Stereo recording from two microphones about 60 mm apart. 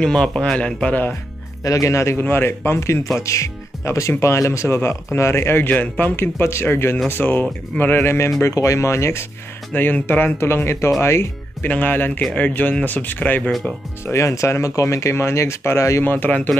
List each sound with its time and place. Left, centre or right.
0.0 s a man's voice: centre
1.6 s speech: left
2.1 s speech: left
8.4 s speech: left
9.8 s speech: left
10.3 s speech: left
11.6 s speech: left
12.2 s a man's voice: centre
12.4 s speech: left
13.4 s speech: centre
14.0 s speech: left
16.0 s speech: left